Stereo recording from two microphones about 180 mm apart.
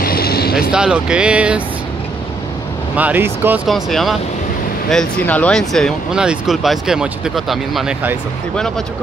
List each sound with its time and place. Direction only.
0.0 s vehicle: 55° left (ahead or behind)
0.6 s speech: 5° right (ahead or behind)
3.0 s speech: 10° right (ahead or behind)